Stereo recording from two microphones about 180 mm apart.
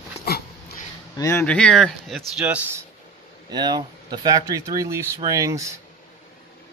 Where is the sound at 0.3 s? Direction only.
60° left (ahead or behind).